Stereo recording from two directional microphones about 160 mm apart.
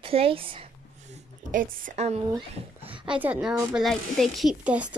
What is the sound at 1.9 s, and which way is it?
Speech, 45° right (ahead or behind).